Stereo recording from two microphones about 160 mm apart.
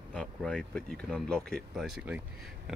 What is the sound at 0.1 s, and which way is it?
Speech, 5° left (ahead or behind).